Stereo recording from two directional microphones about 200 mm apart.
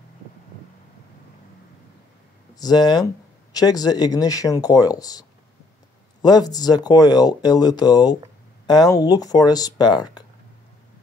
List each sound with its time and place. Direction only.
2.5 s speech: 20° left (ahead or behind)
6.2 s speech: 20° left (ahead or behind)